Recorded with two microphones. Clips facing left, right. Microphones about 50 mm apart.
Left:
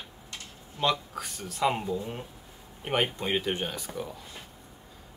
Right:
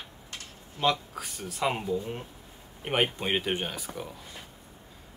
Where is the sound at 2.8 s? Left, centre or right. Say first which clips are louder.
Right 1 dB; centre.